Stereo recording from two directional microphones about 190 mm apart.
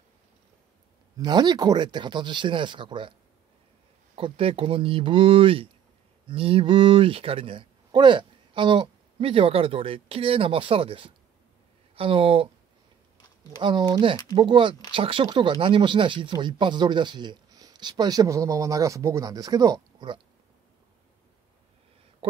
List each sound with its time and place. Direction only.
1.1 s speech: 20° right (ahead or behind)
13.6 s speech: 25° right (ahead or behind)